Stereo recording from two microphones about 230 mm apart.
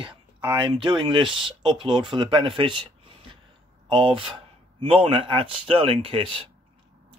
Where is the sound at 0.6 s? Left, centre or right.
Centre.